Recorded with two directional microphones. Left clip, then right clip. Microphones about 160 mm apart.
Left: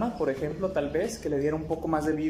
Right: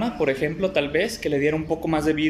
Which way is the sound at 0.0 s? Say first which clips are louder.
Right 6 dB; 20° right (ahead or behind).